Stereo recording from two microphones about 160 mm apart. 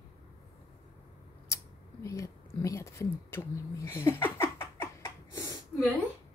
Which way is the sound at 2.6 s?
20° left (ahead or behind).